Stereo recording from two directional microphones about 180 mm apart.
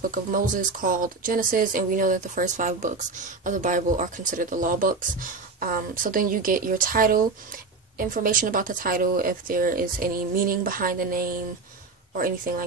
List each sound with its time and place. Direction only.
0.1 s speech: 50° right (ahead or behind)